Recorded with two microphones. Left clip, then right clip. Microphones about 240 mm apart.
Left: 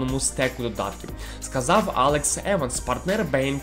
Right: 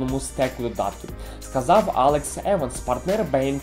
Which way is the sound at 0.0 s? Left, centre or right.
Centre.